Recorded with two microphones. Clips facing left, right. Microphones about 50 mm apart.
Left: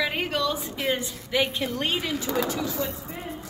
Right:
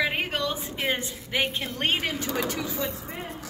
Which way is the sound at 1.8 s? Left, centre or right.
Right.